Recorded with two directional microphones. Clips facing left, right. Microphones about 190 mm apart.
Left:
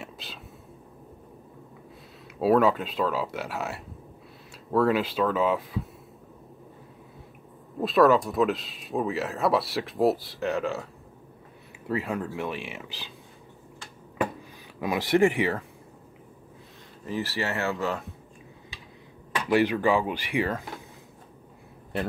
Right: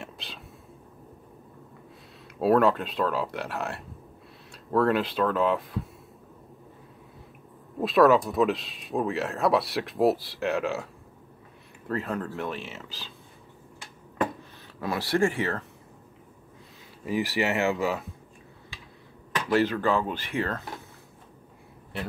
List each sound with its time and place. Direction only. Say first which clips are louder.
0.0 s a sound: even; centre (ahead or behind)
2.3 s speech: even; centre (ahead or behind)
7.8 s speech: even; centre (ahead or behind)
11.9 s speech: left 1 dB; 10° left (ahead or behind)
14.8 s speech: left 3 dB; 15° left (ahead or behind)
17.0 s speech: right 3 dB; 15° right (ahead or behind)
19.5 s speech: left 2 dB; 15° left (ahead or behind)